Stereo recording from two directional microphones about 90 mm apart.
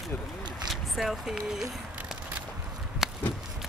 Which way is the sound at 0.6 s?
Centre (ahead or behind).